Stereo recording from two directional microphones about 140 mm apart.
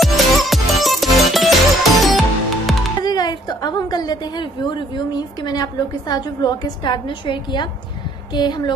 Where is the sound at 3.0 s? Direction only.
30° left (ahead or behind).